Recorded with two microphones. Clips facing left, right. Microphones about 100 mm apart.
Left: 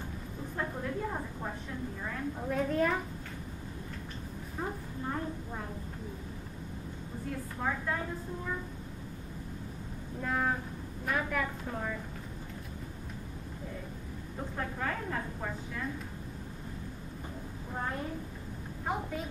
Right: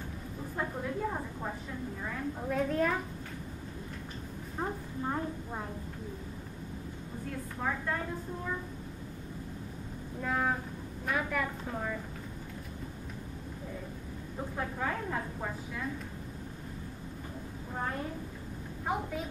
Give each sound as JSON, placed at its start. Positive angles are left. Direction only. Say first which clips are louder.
{"t": 0.6, "sound": "a sound", "louder": "right 1 dB", "side_deg": -5}
{"t": 2.0, "sound": "a woman's voice", "louder": "even", "side_deg": 0}
{"t": 4.6, "sound": "a sound", "louder": "right 2 dB", "side_deg": -20}
{"t": 7.6, "sound": "a woman's voice", "louder": "even", "side_deg": 0}
{"t": 10.2, "sound": "a woman's voice", "louder": "even", "side_deg": 0}
{"t": 14.6, "sound": "a woman's voice", "louder": "right 1 dB", "side_deg": -10}
{"t": 18.9, "sound": "a woman's voice", "louder": "right 1 dB", "side_deg": 0}